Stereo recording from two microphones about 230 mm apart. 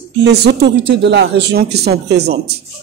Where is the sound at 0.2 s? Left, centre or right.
Right.